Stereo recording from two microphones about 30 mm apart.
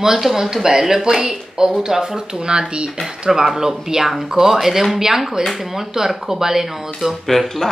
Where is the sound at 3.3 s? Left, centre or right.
Centre.